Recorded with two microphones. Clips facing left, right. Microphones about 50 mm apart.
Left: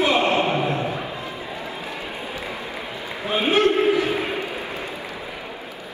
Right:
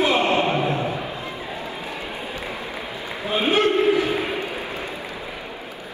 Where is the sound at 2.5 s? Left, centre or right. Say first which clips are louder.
Even; right.